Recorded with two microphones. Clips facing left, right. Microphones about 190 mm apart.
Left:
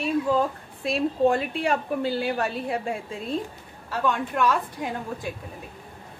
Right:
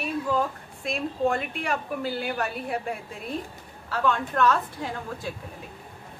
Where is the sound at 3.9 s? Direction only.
10° left (ahead or behind).